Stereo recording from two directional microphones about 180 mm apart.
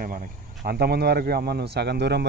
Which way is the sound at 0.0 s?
50° right (ahead or behind).